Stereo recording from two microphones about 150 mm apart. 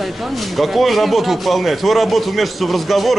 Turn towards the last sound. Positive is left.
turn(degrees=0)  # may be behind; listen again after turning